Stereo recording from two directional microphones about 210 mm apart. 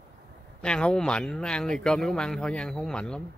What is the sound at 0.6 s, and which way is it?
Speech, 5° left (ahead or behind).